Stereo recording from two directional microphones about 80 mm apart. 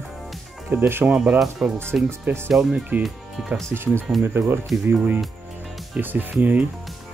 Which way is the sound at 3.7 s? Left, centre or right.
Centre.